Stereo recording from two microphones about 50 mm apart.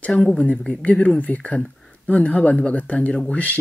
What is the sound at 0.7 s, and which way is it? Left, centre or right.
Speech, left.